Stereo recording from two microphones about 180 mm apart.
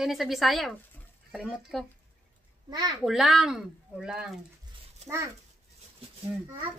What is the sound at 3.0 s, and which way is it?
Speech, centre (ahead or behind).